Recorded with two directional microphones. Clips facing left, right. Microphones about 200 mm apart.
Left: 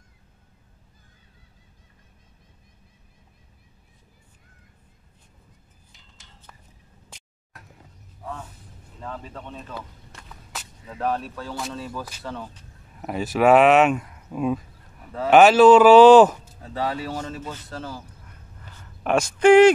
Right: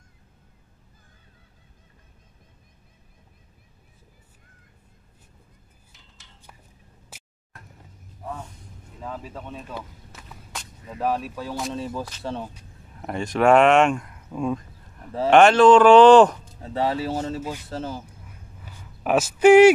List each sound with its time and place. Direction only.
5.9 s cutlery: 5° right (ahead or behind)
7.1 s music: 5° right (ahead or behind)
8.2 s speech: 5° right (ahead or behind)
11.7 s speech: 20° right (ahead or behind)
13.0 s speech: 5° left (ahead or behind)
16.6 s speech: 25° right (ahead or behind)
17.4 s speech: 10° right (ahead or behind)
17.6 s speech: 25° right (ahead or behind)
18.2 s a sound: 10° right (ahead or behind)